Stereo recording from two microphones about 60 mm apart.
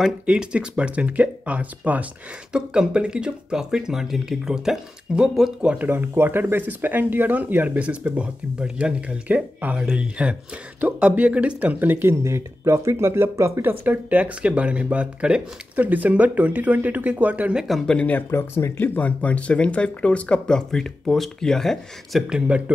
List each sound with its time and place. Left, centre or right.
0.3 s speech: centre
2.5 s speech: centre
5.8 s speech: right; by 8.9 s centre
9.3 s speech: right
15.7 s speech: right
18.3 s speech: left
18.9 s speech: left; by 22.2 s centre